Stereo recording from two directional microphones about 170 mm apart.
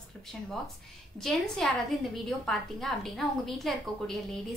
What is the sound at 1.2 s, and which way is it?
A woman's voice, centre (ahead or behind).